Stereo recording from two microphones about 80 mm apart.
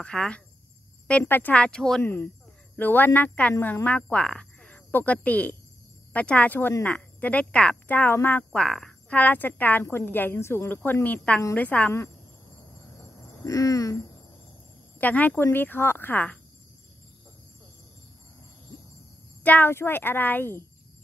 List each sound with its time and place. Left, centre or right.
0.0 s speech: centre
1.2 s speech: left; by 2.0 s centre
2.7 s speech: left
8.5 s speech: centre
9.1 s a woman's voice: left
10.8 s speech: left
13.4 s a sound: left
15.0 s speech: left
19.4 s speech: left